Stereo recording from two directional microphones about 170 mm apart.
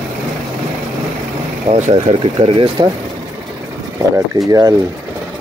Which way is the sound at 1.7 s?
40° right (ahead or behind).